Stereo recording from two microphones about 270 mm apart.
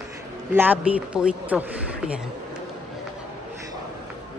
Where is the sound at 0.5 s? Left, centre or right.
Centre.